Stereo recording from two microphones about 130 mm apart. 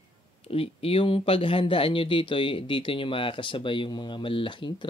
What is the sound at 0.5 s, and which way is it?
Speech, 50° left (ahead or behind).